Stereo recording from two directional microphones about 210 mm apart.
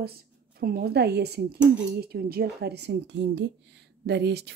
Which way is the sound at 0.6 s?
45° right (ahead or behind).